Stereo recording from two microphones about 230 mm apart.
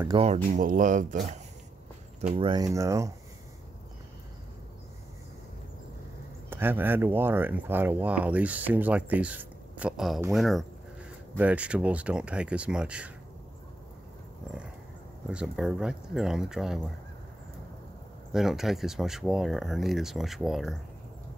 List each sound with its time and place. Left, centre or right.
0.1 s speech: right
2.2 s speech: right
6.5 s speech: centre
15.2 s speech: centre
18.3 s speech: centre